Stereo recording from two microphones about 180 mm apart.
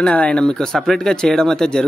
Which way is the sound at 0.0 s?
5° left (ahead or behind).